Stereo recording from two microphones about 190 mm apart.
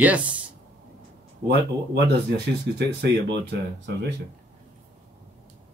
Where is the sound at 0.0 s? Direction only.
5° right (ahead or behind).